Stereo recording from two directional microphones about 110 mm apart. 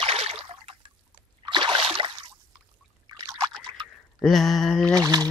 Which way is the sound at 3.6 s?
45° right (ahead or behind).